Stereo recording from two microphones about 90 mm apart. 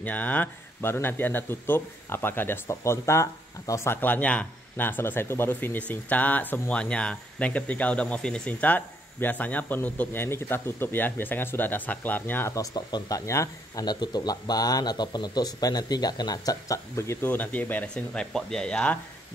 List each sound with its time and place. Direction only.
0.0 s speech: 15° left (ahead or behind)
12.7 s speech: 50° left (ahead or behind)
13.2 s speech: 35° left (ahead or behind)
13.8 s speech: 50° left (ahead or behind); by 18.9 s 10° left (ahead or behind)